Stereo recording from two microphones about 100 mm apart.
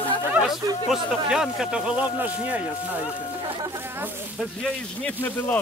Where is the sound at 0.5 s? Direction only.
5° right (ahead or behind).